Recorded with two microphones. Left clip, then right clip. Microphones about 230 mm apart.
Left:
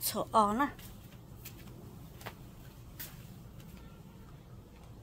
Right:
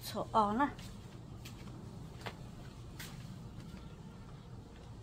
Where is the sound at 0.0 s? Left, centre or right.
Left.